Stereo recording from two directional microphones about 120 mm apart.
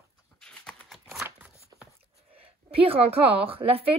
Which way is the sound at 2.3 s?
50° right (ahead or behind).